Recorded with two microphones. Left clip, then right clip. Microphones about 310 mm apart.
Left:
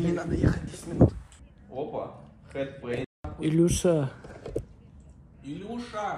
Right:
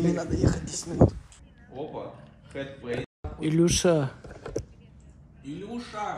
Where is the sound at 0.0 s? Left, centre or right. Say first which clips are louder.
Right 1 dB; centre.